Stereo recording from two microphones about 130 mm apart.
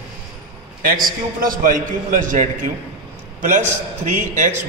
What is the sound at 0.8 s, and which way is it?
A man's voice, 90° right.